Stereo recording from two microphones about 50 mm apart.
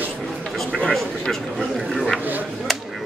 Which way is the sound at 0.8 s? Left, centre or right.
Centre.